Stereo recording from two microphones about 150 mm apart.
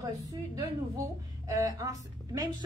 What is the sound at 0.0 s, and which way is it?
A woman's voice, 25° right (ahead or behind).